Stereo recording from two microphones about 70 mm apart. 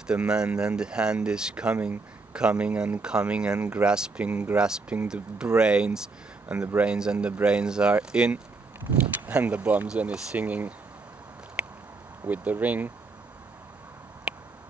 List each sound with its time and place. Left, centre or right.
0.0 s speech: centre
12.3 s speech: right